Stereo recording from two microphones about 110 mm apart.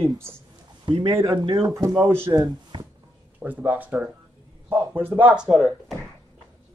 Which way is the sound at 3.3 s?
15° right (ahead or behind).